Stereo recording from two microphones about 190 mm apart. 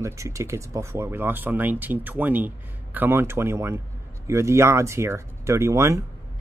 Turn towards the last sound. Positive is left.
turn(degrees=-15)  # may be behind; listen again after turning